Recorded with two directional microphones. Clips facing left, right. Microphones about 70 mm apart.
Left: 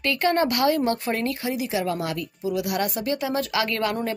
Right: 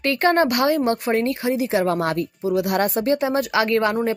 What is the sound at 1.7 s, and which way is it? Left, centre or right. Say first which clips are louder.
A woman's voice: right 6 dB; right.